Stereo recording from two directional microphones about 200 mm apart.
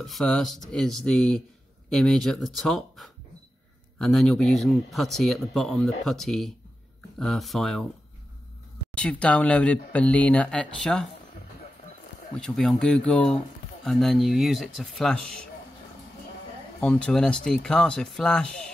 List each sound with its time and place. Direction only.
0.0 s a man's voice: centre (ahead or behind)
8.9 s a man's voice: 5° left (ahead or behind)
12.4 s a man's voice: 5° left (ahead or behind)
16.8 s a man's voice: 5° left (ahead or behind)